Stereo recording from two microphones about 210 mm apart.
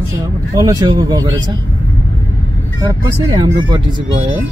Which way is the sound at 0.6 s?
20° right (ahead or behind).